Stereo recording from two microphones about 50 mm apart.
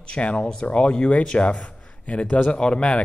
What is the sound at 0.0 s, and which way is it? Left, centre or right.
A man's voice, left.